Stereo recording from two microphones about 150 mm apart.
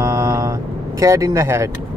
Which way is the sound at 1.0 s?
20° right (ahead or behind).